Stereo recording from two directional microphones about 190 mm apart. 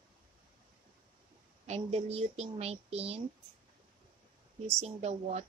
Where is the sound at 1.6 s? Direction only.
35° right (ahead or behind).